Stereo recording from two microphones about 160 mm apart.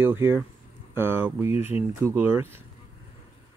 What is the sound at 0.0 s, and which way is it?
Speech, 15° right (ahead or behind).